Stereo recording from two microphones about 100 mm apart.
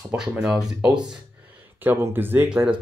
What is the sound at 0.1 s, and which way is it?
Speech, 5° right (ahead or behind).